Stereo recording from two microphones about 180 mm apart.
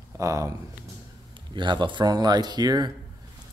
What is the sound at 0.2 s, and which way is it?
Speech, 20° right (ahead or behind).